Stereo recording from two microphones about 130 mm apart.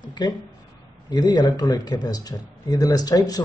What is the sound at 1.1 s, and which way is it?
Speech, 35° left (ahead or behind).